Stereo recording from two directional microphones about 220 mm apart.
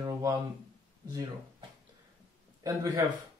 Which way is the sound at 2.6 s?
15° right (ahead or behind).